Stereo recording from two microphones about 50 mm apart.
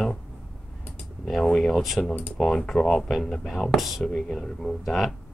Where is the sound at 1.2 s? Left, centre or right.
Centre.